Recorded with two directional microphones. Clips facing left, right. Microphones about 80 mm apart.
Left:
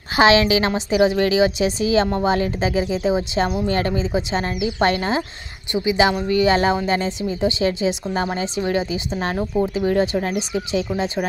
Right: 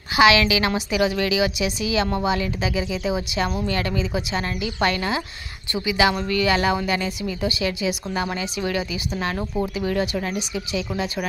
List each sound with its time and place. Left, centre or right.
0.1 s a woman's voice: left